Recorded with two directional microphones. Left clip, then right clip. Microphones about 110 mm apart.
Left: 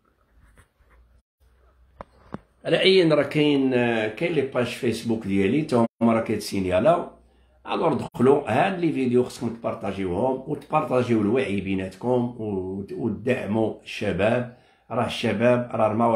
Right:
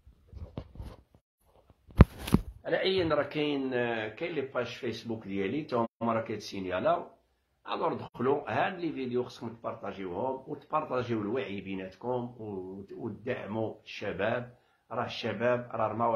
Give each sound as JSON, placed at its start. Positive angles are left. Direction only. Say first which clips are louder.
{"t": 2.6, "sound": "speech", "louder": "left 12 dB", "side_deg": 25}